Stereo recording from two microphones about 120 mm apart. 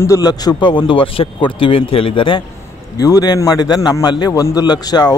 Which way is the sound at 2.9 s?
30° left (ahead or behind).